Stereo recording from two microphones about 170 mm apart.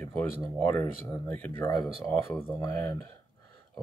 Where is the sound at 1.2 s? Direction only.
10° left (ahead or behind).